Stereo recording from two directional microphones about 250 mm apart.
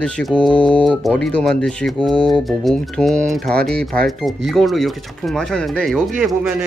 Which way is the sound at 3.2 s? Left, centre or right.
Right.